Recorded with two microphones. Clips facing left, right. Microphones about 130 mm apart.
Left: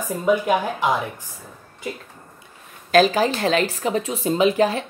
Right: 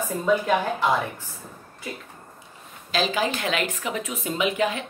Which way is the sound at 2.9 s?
45° left (ahead or behind).